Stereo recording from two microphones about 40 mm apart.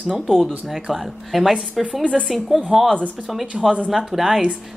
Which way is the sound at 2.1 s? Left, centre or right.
Centre.